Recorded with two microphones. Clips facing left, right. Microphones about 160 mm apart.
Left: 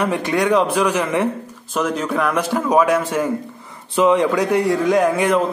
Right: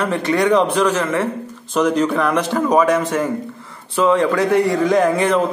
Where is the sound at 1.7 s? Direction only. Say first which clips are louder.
Right 4 dB; 5° left (ahead or behind).